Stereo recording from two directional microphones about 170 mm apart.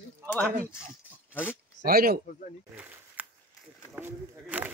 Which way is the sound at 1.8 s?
60° right (ahead or behind).